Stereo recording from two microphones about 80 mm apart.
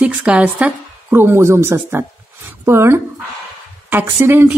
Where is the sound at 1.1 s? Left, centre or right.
Right.